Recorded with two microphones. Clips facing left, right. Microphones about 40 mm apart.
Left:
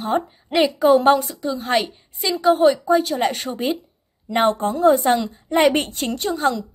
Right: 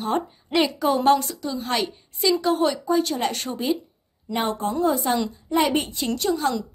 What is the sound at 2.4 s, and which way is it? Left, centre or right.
Speech, centre.